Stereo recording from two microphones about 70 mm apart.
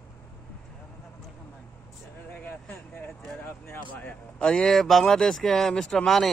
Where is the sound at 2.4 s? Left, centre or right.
Left.